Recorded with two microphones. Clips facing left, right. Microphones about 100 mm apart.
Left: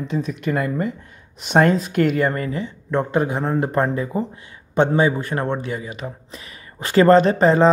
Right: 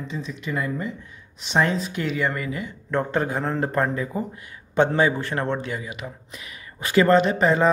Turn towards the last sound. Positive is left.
turn(degrees=35)  # may be behind; listen again after turning